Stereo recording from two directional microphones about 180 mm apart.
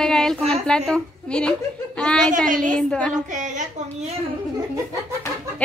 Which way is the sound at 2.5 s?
45° right (ahead or behind).